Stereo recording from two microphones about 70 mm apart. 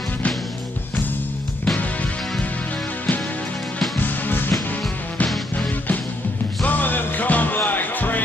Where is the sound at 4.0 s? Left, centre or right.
Left.